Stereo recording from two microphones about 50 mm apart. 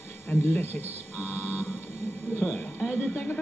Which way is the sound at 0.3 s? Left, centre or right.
Left.